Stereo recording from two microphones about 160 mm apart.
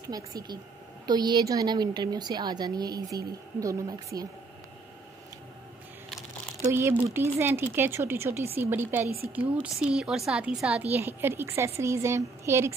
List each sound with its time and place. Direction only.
0.1 s a woman's voice: 25° right (ahead or behind)
6.7 s a woman's voice: 15° right (ahead or behind)